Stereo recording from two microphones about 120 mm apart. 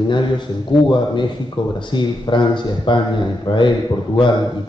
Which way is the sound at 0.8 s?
40° left (ahead or behind).